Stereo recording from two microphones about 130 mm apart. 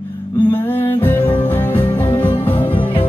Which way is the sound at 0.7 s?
15° left (ahead or behind).